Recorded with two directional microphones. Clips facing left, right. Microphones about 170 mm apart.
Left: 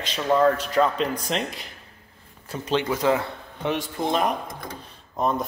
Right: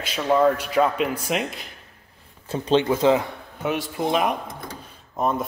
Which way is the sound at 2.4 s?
25° right (ahead or behind).